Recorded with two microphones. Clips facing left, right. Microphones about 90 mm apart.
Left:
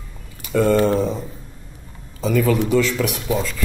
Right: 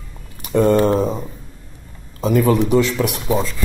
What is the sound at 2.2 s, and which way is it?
Speech, 35° right (ahead or behind).